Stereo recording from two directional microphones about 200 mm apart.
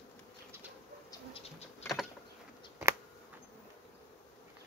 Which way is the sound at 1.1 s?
25° left (ahead or behind).